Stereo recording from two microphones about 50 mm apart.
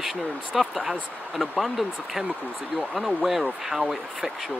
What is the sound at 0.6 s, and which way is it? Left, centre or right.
Speech, centre.